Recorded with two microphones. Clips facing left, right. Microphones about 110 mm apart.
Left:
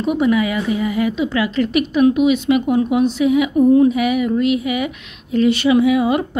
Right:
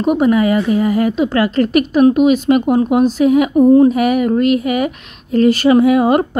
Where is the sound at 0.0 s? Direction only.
45° right (ahead or behind).